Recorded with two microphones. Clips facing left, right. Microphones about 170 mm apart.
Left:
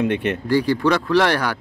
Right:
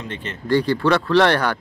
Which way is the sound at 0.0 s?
65° left (ahead or behind).